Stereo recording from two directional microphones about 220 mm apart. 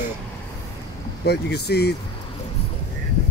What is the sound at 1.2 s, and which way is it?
Speech, 50° left (ahead or behind).